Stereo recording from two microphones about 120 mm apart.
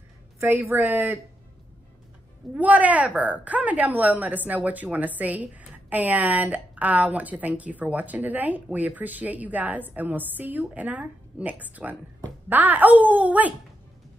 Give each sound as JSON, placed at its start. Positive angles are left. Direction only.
{"t": 0.4, "sound": "a woman's voice", "side_deg": -20}
{"t": 2.5, "sound": "a woman's voice", "side_deg": -10}